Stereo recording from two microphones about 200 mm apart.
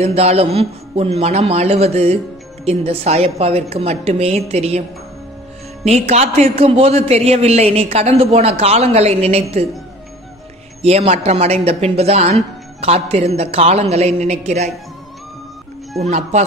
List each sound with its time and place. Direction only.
0.0 s a man's voice: 30° right (ahead or behind)
5.9 s a man's voice: 30° right (ahead or behind)
10.8 s a man's voice: 30° right (ahead or behind)
16.0 s a man's voice: 35° right (ahead or behind)